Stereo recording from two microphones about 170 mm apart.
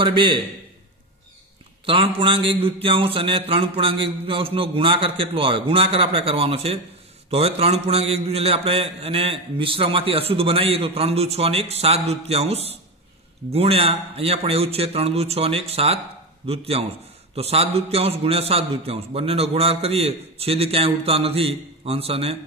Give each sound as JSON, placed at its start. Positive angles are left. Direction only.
{"t": 0.0, "sound": "a man's voice", "side_deg": -30}
{"t": 1.9, "sound": "mantra", "side_deg": -30}